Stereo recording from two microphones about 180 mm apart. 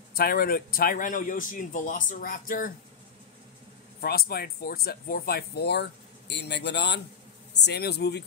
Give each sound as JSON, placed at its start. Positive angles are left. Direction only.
{"t": 0.1, "sound": "a man's voice", "side_deg": 55}
{"t": 4.0, "sound": "speech", "side_deg": 55}
{"t": 7.6, "sound": "speech", "side_deg": 65}